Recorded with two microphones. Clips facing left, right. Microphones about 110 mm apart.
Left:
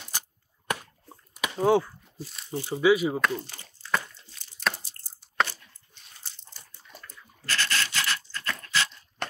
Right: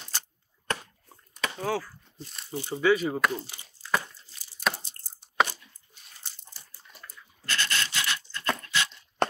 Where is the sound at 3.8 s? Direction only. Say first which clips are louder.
Even; 5° right (ahead or behind).